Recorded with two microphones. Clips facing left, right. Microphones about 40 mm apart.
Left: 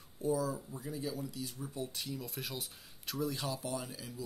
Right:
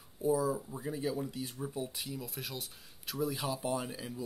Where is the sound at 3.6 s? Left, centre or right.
Right.